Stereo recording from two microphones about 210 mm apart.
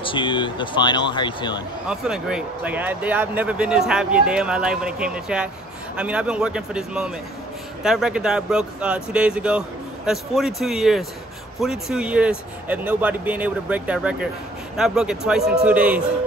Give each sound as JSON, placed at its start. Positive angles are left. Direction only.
{"t": 0.0, "sound": "speech", "side_deg": 25}
{"t": 1.9, "sound": "speech", "side_deg": -5}